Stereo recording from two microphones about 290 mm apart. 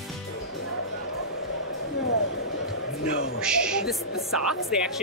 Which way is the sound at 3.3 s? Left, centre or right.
Centre.